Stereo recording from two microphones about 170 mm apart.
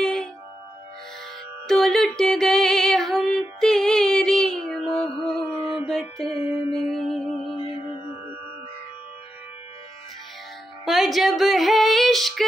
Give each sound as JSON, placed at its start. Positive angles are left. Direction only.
{"t": 0.0, "sound": "music", "side_deg": 5}
{"t": 1.7, "sound": "music", "side_deg": 0}
{"t": 6.5, "sound": "mantra", "side_deg": 0}
{"t": 7.5, "sound": "music", "side_deg": -25}
{"t": 10.9, "sound": "music", "side_deg": 0}